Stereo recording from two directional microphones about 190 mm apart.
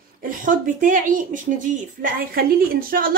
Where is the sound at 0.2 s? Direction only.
45° right (ahead or behind).